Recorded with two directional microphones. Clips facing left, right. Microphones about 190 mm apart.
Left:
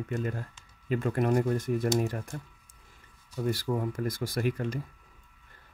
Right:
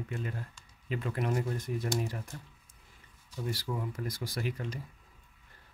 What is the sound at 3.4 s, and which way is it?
Speech, 50° left (ahead or behind).